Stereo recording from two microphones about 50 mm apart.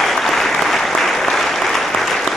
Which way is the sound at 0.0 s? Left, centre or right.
Centre.